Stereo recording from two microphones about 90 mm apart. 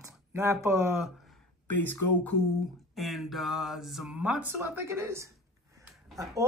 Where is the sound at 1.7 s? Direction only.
25° left (ahead or behind).